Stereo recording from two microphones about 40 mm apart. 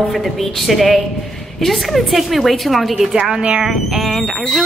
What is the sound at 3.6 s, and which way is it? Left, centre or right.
A woman's voice, centre.